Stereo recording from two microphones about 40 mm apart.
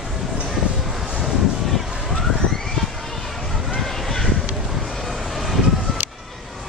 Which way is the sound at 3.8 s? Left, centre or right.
Centre.